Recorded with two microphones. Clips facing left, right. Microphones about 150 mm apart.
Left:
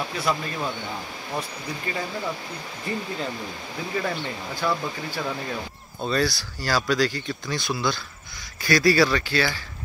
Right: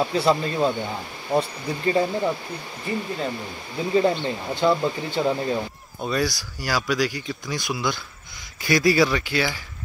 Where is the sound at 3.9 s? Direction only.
25° right (ahead or behind).